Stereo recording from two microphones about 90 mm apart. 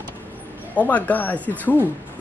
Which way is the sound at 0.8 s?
15° left (ahead or behind).